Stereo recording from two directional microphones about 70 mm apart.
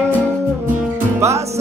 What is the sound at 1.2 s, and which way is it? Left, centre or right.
Music, right.